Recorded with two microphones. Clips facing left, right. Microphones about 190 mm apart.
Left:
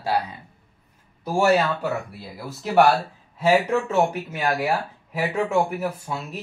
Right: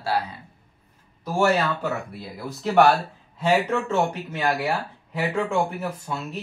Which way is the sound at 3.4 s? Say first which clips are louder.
Left 2 dB; 10° left (ahead or behind).